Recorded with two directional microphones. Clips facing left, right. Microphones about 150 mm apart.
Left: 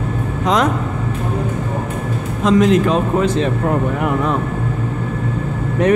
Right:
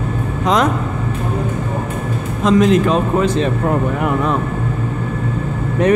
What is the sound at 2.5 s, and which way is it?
Speech, 30° right (ahead or behind).